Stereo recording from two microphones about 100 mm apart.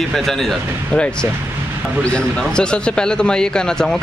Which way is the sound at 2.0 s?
10° left (ahead or behind).